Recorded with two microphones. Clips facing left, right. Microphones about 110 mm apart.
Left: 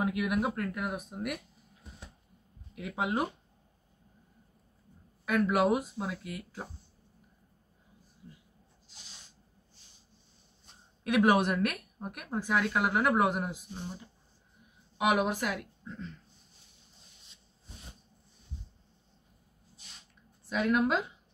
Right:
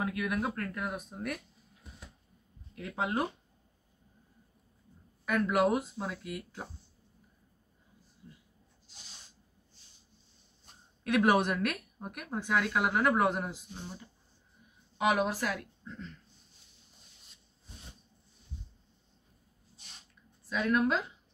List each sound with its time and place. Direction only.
0.0 s speech: 15° left (ahead or behind)
2.7 s speech: 10° left (ahead or behind)
5.3 s a woman's voice: 10° left (ahead or behind)
11.1 s a woman's voice: 10° left (ahead or behind)
20.4 s speech: 15° left (ahead or behind)